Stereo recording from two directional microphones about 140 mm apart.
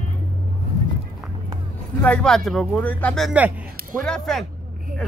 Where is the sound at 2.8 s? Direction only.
10° left (ahead or behind).